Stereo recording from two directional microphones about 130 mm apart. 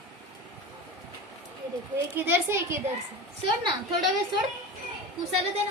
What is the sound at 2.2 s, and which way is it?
Speech, 20° right (ahead or behind).